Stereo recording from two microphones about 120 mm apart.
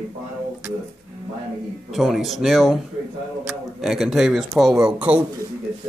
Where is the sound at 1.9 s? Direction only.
Centre (ahead or behind).